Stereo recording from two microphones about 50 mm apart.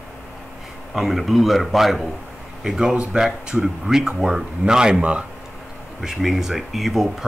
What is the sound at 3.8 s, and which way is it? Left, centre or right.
Speech, centre.